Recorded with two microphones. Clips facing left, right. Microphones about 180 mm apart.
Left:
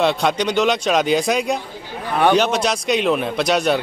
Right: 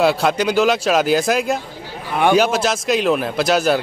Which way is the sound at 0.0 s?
5° right (ahead or behind).